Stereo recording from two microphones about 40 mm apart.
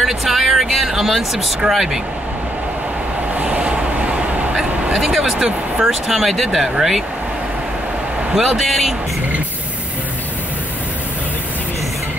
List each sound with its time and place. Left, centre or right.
0.0 s a sound: centre
1.7 s speech: centre
3.3 s vehicle: right
4.9 s speech: centre
8.3 s speech: centre